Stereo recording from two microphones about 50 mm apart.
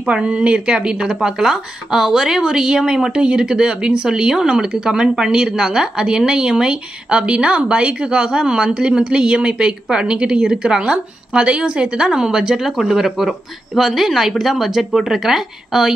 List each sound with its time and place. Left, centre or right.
0.0 s speech: right